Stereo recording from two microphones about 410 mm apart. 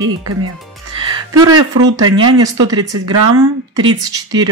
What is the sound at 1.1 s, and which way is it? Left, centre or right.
Speech, centre.